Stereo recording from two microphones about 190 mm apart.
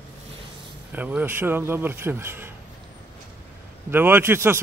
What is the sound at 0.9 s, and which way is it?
A man's voice, 10° right (ahead or behind).